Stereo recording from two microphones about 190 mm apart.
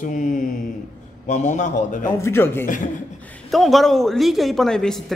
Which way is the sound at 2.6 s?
45° left (ahead or behind).